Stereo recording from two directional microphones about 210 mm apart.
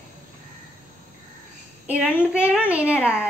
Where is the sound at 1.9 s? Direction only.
5° right (ahead or behind).